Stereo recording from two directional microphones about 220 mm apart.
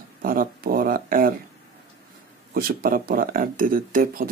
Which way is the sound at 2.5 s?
40° right (ahead or behind).